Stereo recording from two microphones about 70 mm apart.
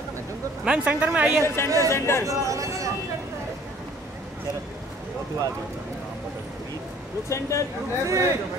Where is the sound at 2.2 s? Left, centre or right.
Right.